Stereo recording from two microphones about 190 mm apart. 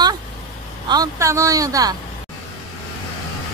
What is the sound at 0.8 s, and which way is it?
Speech, 20° right (ahead or behind).